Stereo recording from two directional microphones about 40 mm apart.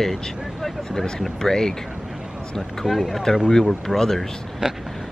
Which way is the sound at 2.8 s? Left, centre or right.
Centre.